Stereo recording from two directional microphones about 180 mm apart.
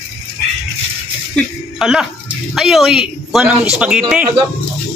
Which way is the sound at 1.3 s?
Centre (ahead or behind).